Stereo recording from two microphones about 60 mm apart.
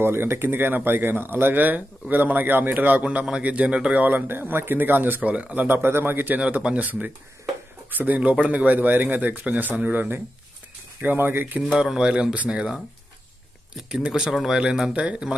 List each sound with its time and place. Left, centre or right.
0.0 s speech: right
5.3 s speech: right
11.8 s speech: centre
13.8 s speech: centre